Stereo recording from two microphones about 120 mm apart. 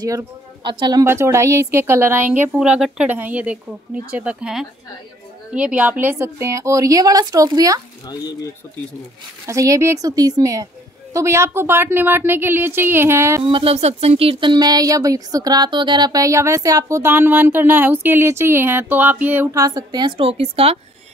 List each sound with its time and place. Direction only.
0.0 s speech: 30° right (ahead or behind)
0.7 s a woman's voice: 40° right (ahead or behind)
1.0 s speech: 20° right (ahead or behind)
8.1 s speech: 35° left (ahead or behind)
9.5 s speech: 25° right (ahead or behind)
13.4 s speech: 50° right (ahead or behind)
13.7 s speech: 60° right (ahead or behind); by 19.5 s 15° right (ahead or behind)
19.5 s a woman's voice: 30° right (ahead or behind)
20.2 s speech: 55° right (ahead or behind)